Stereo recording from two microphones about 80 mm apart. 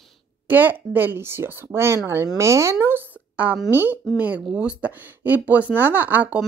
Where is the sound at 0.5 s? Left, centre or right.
Right.